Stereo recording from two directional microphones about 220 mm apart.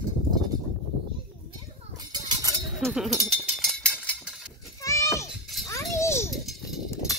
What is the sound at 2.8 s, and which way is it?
Speech, centre (ahead or behind).